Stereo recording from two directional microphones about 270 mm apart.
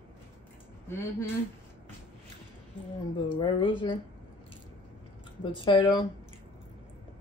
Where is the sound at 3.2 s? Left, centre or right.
Centre.